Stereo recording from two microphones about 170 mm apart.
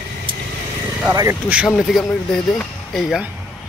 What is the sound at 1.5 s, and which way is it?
Speech, 5° right (ahead or behind).